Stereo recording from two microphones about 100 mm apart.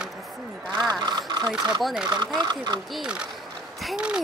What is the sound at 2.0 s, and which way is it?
Speech, 45° right (ahead or behind).